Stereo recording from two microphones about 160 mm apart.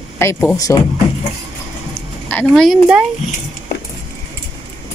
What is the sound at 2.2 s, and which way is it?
Speech, 5° left (ahead or behind).